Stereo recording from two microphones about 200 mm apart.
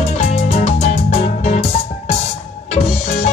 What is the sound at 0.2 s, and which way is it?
Music, 30° left (ahead or behind).